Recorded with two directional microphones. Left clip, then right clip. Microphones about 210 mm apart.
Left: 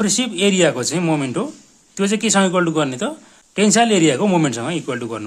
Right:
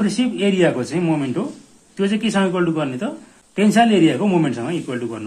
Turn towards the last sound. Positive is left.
turn(degrees=50)  # may be behind; listen again after turning